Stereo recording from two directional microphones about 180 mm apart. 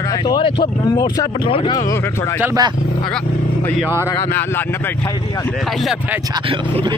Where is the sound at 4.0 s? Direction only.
15° left (ahead or behind).